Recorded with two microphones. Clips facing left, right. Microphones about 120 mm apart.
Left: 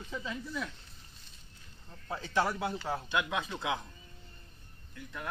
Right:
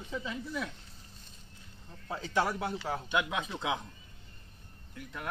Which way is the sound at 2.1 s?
5° right (ahead or behind).